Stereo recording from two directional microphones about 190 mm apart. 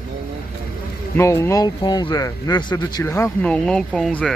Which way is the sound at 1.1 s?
15° left (ahead or behind).